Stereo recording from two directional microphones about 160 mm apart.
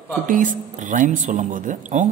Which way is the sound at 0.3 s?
55° right (ahead or behind).